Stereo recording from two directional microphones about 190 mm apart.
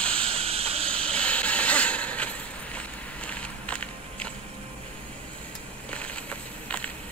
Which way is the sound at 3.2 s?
5° left (ahead or behind).